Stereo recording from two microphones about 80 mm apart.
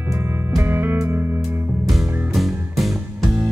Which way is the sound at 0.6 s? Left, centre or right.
Right.